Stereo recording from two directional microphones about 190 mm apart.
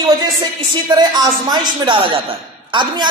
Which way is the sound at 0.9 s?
20° right (ahead or behind).